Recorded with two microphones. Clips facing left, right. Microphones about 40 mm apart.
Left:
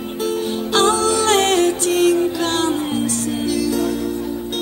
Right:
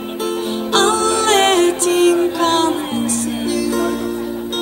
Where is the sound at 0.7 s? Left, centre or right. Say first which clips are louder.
Right 1 dB; centre.